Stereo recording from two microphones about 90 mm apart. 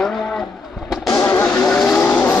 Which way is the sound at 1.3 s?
25° left (ahead or behind).